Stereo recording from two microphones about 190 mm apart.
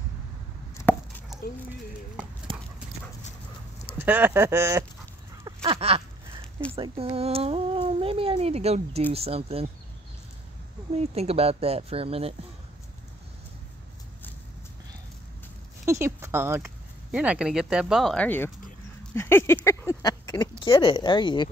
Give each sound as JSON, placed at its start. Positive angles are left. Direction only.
{"t": 0.7, "sound": "chopping", "side_deg": 10}
{"t": 2.5, "sound": "clip-clop", "side_deg": -25}
{"t": 4.0, "sound": "speech", "side_deg": -10}
{"t": 5.4, "sound": "a sound", "side_deg": -30}
{"t": 6.7, "sound": "speech", "side_deg": -30}
{"t": 11.0, "sound": "speech", "side_deg": -30}
{"t": 15.8, "sound": "speech", "side_deg": -15}